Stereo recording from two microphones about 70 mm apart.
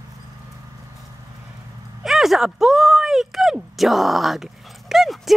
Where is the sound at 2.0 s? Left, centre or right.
Centre.